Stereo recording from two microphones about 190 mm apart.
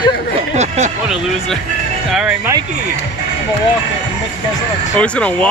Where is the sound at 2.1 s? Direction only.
5° right (ahead or behind).